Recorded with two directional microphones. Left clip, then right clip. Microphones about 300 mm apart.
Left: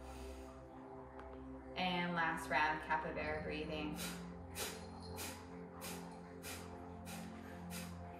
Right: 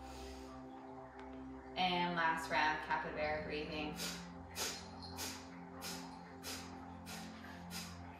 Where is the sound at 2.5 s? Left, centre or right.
Centre.